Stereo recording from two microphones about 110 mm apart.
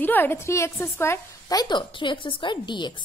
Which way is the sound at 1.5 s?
40° left (ahead or behind).